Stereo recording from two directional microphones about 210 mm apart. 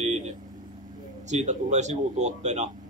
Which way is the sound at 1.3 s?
35° right (ahead or behind).